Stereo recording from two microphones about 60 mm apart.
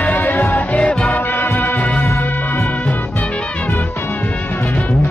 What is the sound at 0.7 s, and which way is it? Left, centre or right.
Music, centre.